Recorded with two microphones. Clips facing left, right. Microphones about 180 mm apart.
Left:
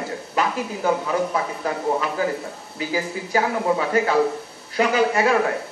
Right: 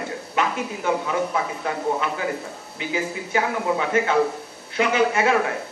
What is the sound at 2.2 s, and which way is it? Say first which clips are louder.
Speech: left 3 dB; 35° left (ahead or behind).